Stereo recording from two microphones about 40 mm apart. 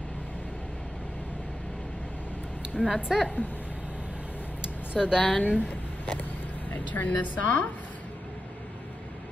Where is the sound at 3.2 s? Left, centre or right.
Left.